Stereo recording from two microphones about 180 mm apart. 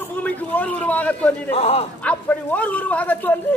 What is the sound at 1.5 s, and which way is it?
Speech, 35° left (ahead or behind).